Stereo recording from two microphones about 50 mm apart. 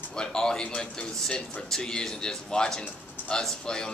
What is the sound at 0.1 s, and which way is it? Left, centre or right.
Speech, centre.